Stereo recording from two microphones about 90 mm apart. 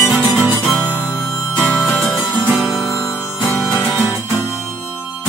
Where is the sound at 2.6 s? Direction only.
10° right (ahead or behind).